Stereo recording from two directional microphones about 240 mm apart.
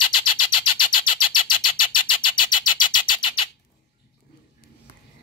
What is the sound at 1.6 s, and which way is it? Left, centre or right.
Vehicle, left.